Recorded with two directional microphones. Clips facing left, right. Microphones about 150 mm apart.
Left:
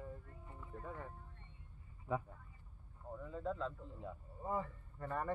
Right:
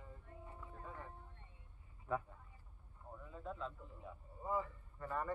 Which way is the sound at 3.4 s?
90° left.